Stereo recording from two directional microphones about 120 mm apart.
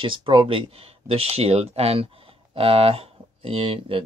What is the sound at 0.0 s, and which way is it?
Speech, 45° right (ahead or behind).